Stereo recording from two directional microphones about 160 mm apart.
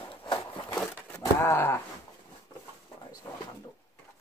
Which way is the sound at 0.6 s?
15° left (ahead or behind).